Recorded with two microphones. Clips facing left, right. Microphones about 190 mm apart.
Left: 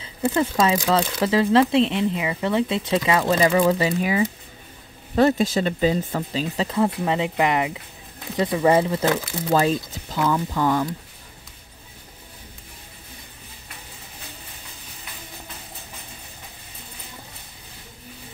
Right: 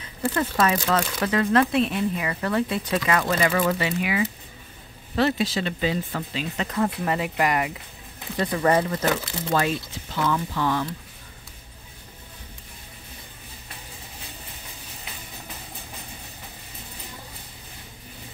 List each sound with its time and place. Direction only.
0.0 s speech: 20° left (ahead or behind)
1.2 s speech: 25° left (ahead or behind)
5.1 s speech: 50° left (ahead or behind); by 9.1 s 20° left (ahead or behind)
9.5 s speech: 35° left (ahead or behind)